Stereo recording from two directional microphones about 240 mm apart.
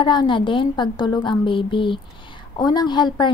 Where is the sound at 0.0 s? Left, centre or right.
Centre.